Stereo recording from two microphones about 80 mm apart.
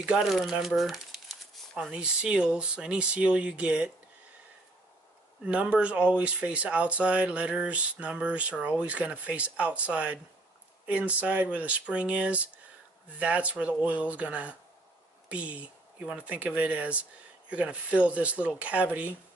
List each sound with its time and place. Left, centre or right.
0.0 s speech: centre
5.4 s speech: centre